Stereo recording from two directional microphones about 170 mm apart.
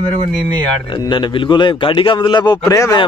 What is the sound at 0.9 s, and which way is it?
A man's voice, 30° left (ahead or behind).